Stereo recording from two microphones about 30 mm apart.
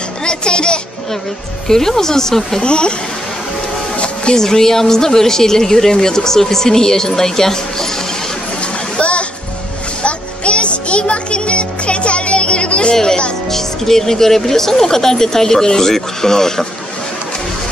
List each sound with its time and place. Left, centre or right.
0.2 s a sound: left
1.7 s a woman's voice: centre
2.6 s speech: left
3.9 s music: left
4.4 s a woman's voice: centre
8.5 s a sound: left
10.0 s music: left
13.5 s a woman's voice: centre